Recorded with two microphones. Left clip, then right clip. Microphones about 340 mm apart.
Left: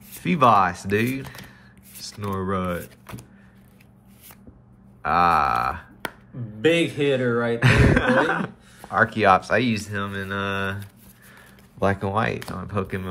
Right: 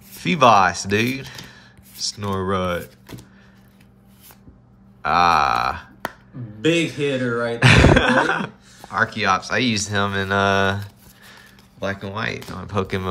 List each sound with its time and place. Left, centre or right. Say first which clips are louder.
0.2 s speech: right 3 dB; centre
5.0 s speech: right 3 dB; centre
7.0 s speech: even; centre
7.6 s speech: right 7 dB; centre
11.8 s speech: left 3 dB; centre